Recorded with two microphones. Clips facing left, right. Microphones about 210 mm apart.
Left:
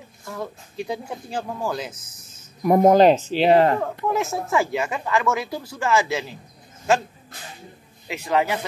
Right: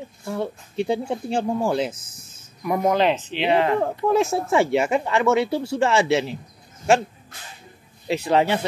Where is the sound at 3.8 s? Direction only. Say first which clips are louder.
Right 4 dB; 30° right (ahead or behind).